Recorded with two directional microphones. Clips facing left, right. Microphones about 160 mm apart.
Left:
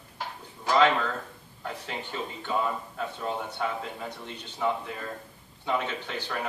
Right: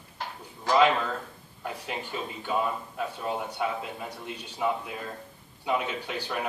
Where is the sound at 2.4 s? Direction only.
10° right (ahead or behind).